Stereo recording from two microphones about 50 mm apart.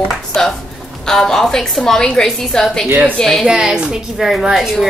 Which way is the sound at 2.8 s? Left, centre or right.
Right.